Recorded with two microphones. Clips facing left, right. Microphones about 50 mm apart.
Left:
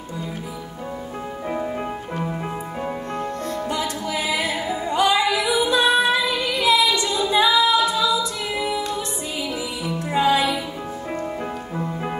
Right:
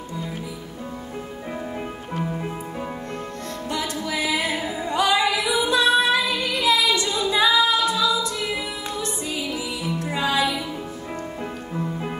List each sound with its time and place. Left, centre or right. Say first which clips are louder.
2.1 s music: right 2 dB; centre
3.7 s music: right 3 dB; left
4.8 s female singing: left 1 dB; left
9.9 s music: left 5 dB; left
11.7 s music: right 1 dB; centre